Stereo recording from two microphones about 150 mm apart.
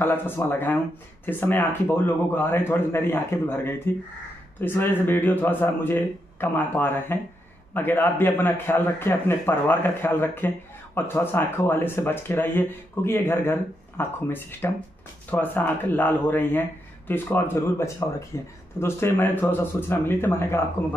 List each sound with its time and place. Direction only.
0.0 s speech: 15° left (ahead or behind)